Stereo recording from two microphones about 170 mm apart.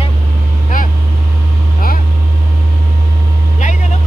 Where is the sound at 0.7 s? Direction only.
55° left (ahead or behind).